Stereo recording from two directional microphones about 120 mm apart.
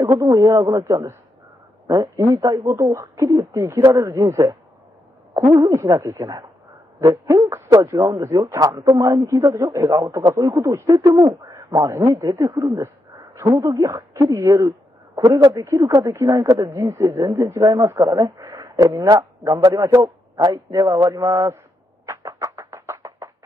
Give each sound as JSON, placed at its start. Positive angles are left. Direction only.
{"t": 0.0, "sound": "speech", "side_deg": -30}
{"t": 11.1, "sound": "a man's voice", "side_deg": -40}
{"t": 12.1, "sound": "speech", "side_deg": -25}
{"t": 15.1, "sound": "speech", "side_deg": -40}
{"t": 15.5, "sound": "speech", "side_deg": -25}
{"t": 22.0, "sound": "a sound", "side_deg": -25}